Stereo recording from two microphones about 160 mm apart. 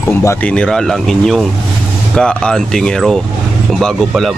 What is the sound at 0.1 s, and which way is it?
Speech, 15° left (ahead or behind).